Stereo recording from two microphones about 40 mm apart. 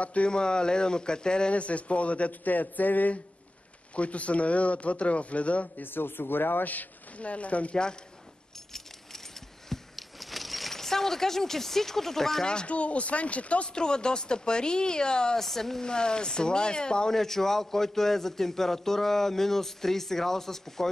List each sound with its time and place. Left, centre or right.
0.0 s a man's voice: left
0.3 s speech: left
1.5 s a man's voice: left
2.4 s speech: left
3.9 s a man's voice: left
5.8 s speech: left
6.6 s speech: left
8.7 s keys jangling: centre
12.6 s a man's voice: left
13.7 s speech: left
15.4 s a man's voice: centre
15.8 s speech: centre
17.1 s a man's voice: centre